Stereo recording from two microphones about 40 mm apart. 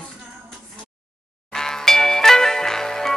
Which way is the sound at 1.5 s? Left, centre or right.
Centre.